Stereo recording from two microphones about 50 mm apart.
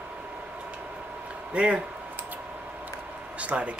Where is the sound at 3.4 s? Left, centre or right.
Right.